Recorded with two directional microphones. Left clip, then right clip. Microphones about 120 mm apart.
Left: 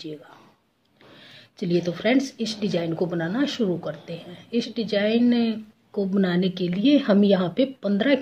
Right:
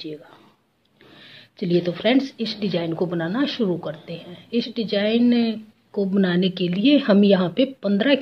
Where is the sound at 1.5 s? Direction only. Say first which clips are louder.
Right 3 dB; 20° right (ahead or behind).